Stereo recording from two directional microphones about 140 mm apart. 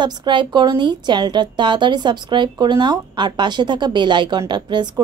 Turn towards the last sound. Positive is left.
turn(degrees=-30)  # may be behind; listen again after turning